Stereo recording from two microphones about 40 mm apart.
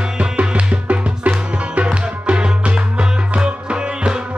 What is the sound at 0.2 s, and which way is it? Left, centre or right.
Music, right.